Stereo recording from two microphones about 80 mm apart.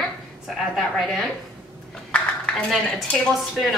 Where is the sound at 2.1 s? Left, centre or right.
Centre.